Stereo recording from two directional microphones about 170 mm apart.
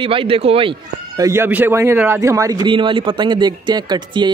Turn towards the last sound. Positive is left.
turn(degrees=-25)  # may be behind; listen again after turning